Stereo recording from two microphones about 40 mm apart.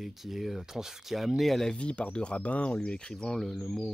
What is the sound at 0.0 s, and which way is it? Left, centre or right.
Speech, centre.